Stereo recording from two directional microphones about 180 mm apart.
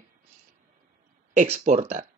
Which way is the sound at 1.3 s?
40° right (ahead or behind).